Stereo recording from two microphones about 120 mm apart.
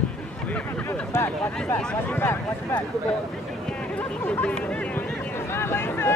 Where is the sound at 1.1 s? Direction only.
20° left (ahead or behind).